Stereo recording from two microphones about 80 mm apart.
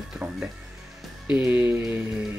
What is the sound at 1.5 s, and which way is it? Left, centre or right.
Speech, right.